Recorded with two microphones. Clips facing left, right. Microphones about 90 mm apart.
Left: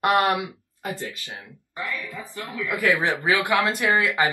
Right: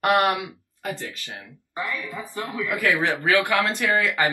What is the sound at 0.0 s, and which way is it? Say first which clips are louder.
Speech: even; 20° left (ahead or behind).